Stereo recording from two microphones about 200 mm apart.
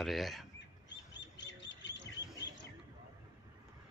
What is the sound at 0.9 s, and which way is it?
Bird, 60° left (ahead or behind).